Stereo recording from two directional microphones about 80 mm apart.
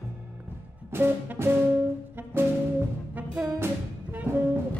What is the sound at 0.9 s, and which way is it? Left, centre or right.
Music, right.